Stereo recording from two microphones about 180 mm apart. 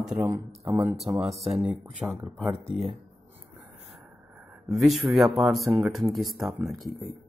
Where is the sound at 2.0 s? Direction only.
15° right (ahead or behind).